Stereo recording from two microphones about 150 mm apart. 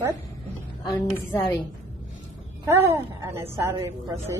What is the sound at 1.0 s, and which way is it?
Speech, 15° left (ahead or behind).